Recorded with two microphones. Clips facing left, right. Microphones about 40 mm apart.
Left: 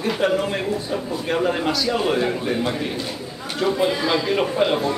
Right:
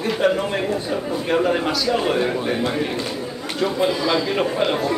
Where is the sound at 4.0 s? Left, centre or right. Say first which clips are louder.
Right 1 dB; centre.